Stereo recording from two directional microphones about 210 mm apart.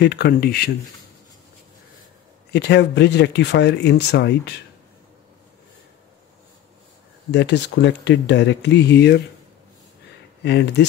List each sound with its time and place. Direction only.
0.0 s speech: 50° left (ahead or behind)
2.5 s speech: 55° left (ahead or behind)
7.2 s speech: 55° left (ahead or behind)
10.4 s speech: 55° left (ahead or behind)